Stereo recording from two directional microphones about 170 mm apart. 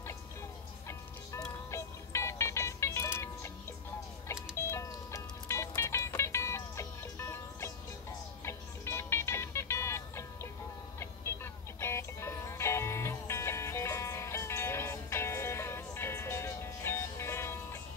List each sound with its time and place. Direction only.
1.7 s music: 15° left (ahead or behind)
4.6 s music: 15° left (ahead or behind)
11.8 s music: 15° left (ahead or behind)